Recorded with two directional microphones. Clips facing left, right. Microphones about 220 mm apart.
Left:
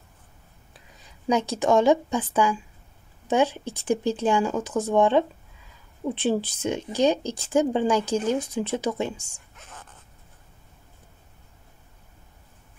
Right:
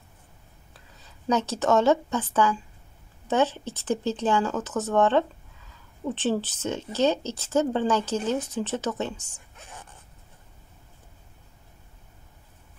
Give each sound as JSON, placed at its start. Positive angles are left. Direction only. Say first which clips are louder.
{"t": 1.2, "sound": "speech", "louder": "left 1 dB", "side_deg": 10}
{"t": 9.6, "sound": "dog", "louder": "right 1 dB", "side_deg": -15}